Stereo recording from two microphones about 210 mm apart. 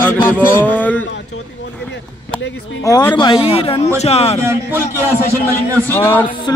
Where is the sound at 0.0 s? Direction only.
10° left (ahead or behind).